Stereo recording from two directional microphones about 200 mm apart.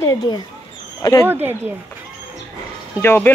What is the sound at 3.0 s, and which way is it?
Speech, 10° left (ahead or behind).